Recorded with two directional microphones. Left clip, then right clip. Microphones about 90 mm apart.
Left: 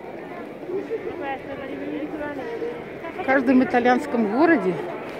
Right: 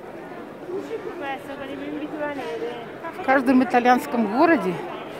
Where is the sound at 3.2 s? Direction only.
75° right (ahead or behind).